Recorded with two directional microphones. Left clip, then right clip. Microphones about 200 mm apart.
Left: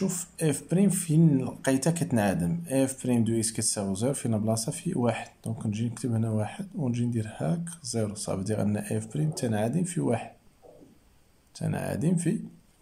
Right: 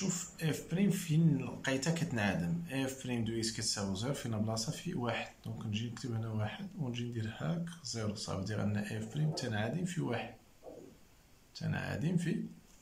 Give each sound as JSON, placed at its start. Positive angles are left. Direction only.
{"t": 0.1, "sound": "speech", "side_deg": 35}
{"t": 11.5, "sound": "speech", "side_deg": 30}